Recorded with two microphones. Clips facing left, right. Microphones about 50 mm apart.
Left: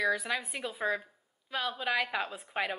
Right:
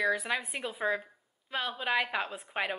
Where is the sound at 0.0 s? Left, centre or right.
Centre.